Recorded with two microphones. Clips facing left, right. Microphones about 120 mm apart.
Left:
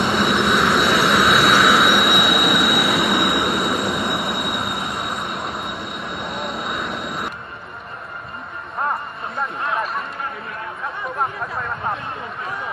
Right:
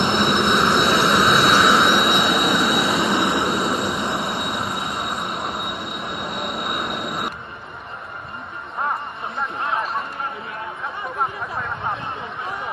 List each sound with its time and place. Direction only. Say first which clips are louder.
0.2 s vehicle: left 1 dB; centre (ahead or behind)
1.0 s jet engine: left 1 dB; centre (ahead or behind)
2.7 s vehicle: left 1 dB; centre (ahead or behind)
3.0 s train: left 1 dB; 25° right (ahead or behind)
3.6 s train: left 1 dB; centre (ahead or behind)
6.9 s vehicle: even; centre (ahead or behind)
11.1 s a sound: even; centre (ahead or behind)